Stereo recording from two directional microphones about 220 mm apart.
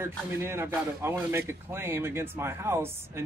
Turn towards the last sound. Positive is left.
turn(degrees=-10)  # may be behind; listen again after turning